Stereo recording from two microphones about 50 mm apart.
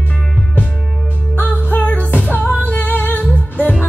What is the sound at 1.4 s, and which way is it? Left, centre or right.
Music, left.